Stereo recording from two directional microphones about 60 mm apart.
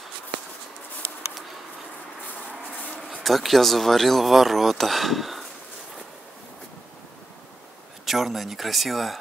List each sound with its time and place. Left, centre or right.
2.7 s bee: left
3.0 s speech: centre
8.0 s speech: centre